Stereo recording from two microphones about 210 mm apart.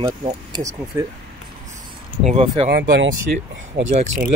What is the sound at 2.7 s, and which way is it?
Speech, 55° right (ahead or behind).